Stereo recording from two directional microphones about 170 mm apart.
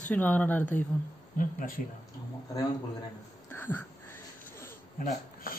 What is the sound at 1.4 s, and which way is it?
Speech, 55° left (ahead or behind).